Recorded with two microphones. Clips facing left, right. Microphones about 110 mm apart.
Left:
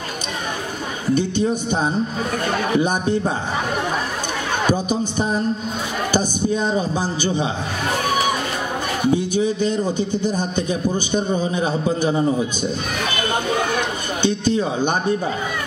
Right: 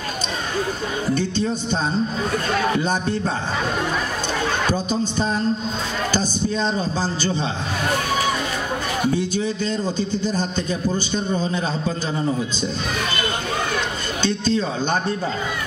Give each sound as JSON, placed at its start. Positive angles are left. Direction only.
{"t": 1.1, "sound": "a man's voice", "side_deg": 15}
{"t": 2.8, "sound": "a man's voice", "side_deg": 15}
{"t": 4.6, "sound": "a man's voice", "side_deg": 15}
{"t": 9.1, "sound": "a man's voice", "side_deg": 15}
{"t": 14.2, "sound": "a man's voice", "side_deg": 15}